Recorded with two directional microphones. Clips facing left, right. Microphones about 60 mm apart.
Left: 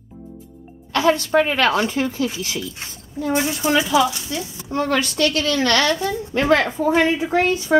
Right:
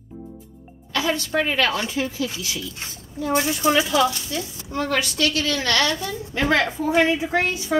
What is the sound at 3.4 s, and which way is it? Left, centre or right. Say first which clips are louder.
Speech: even; centre.